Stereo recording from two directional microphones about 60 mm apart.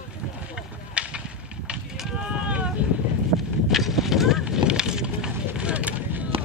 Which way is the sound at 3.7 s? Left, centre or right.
Centre.